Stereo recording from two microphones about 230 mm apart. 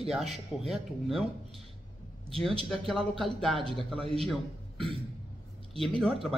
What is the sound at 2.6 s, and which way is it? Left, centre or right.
A man's voice, centre.